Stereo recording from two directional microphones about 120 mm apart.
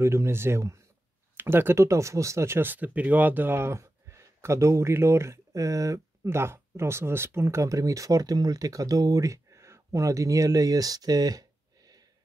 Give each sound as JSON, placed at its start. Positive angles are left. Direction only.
{"t": 0.0, "sound": "speech", "side_deg": -20}